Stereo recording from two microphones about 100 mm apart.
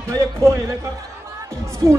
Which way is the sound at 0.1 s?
30° right (ahead or behind).